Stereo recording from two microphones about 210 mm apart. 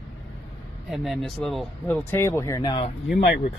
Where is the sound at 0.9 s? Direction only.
Centre (ahead or behind).